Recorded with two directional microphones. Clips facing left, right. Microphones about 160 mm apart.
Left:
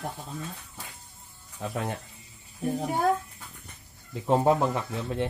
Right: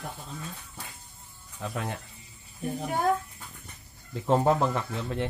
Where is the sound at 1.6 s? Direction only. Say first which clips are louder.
Left 2 dB; 25° left (ahead or behind).